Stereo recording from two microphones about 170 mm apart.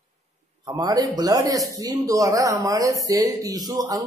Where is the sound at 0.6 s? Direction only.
20° right (ahead or behind).